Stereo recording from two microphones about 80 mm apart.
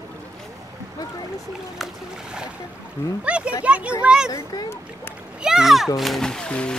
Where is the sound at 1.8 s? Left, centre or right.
Centre.